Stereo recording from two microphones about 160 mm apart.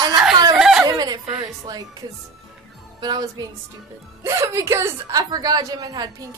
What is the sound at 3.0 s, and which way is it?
A woman's voice, 25° right (ahead or behind).